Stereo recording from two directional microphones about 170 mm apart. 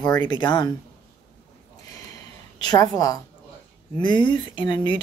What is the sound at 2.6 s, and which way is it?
Speech, 25° left (ahead or behind).